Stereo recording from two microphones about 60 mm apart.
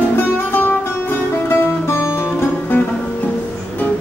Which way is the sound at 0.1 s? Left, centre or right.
Left.